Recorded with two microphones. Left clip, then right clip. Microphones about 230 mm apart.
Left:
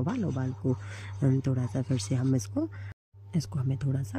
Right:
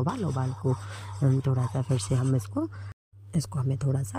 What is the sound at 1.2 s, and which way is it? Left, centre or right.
Speech, centre.